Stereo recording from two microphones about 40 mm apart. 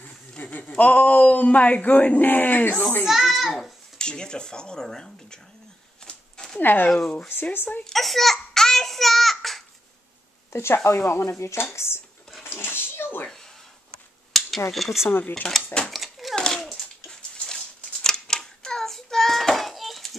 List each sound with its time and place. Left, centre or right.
0.4 s speech: left
3.1 s a child's voice: centre
4.0 s speech: left
6.0 s a sound: centre
6.6 s speech: left
7.5 s dishes: left
7.9 s a child's voice: centre
10.5 s speech: left
12.4 s a sound: left
14.3 s a sound: centre
15.0 s dishes: left
15.8 s a sound: centre
18.0 s child singing: centre